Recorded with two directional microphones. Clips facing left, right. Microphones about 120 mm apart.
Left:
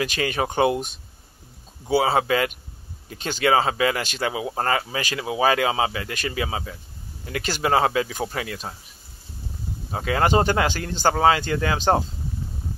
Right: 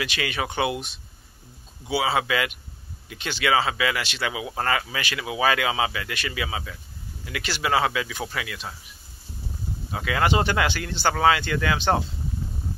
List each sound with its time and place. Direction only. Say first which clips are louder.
0.0 s speech: left 4 dB; 40° left (ahead or behind)
9.8 s speech: left 2 dB; 35° left (ahead or behind)